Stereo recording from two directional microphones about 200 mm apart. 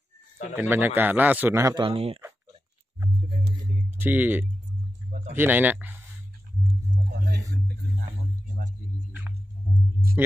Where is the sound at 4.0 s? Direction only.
10° right (ahead or behind).